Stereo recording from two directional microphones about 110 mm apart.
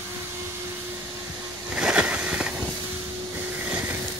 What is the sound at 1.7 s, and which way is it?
Vehicle, 10° right (ahead or behind).